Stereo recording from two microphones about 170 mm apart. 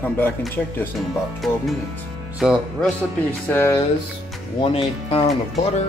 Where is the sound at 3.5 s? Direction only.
15° left (ahead or behind).